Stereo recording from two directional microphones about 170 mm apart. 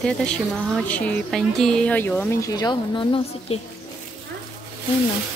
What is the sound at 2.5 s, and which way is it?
A woman's voice, 25° left (ahead or behind).